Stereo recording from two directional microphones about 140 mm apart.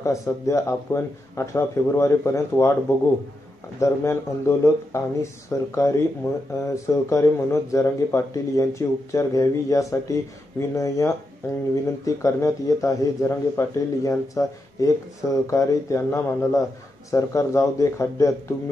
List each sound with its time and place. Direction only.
0.0 s speech: 20° left (ahead or behind)
3.8 s speech: 20° left (ahead or behind)